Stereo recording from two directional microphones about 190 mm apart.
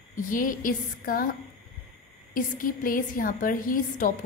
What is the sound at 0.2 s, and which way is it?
A woman's voice, 45° left (ahead or behind).